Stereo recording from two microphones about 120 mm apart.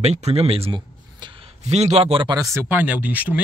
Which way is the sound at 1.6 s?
65° right (ahead or behind).